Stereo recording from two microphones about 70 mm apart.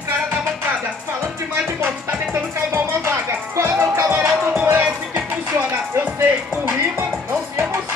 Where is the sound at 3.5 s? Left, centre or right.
Right.